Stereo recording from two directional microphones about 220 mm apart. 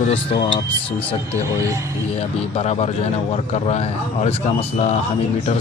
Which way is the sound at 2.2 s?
30° left (ahead or behind).